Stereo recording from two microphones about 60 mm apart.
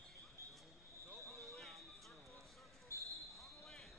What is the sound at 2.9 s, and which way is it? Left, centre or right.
Basketball bounce, left.